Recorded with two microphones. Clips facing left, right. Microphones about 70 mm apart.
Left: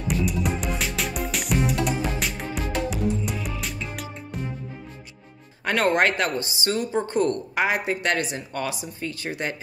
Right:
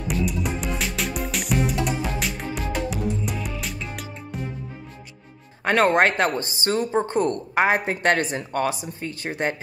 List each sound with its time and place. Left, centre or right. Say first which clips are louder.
0.1 s music: even; centre
5.6 s a woman's voice: right 3 dB; right
7.5 s a woman's voice: right 3 dB; right